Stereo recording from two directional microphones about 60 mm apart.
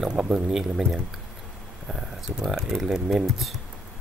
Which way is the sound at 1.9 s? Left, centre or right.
Centre.